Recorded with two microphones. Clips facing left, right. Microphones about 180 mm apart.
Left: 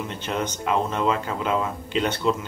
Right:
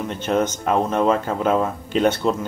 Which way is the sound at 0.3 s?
45° right (ahead or behind).